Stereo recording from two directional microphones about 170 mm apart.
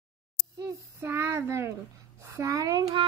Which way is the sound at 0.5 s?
20° right (ahead or behind).